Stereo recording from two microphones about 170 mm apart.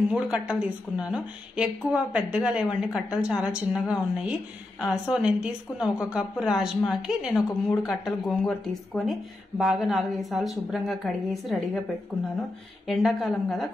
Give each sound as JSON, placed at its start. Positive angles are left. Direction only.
{"t": 0.1, "sound": "a woman's voice", "side_deg": -5}
{"t": 12.8, "sound": "a woman's voice", "side_deg": 0}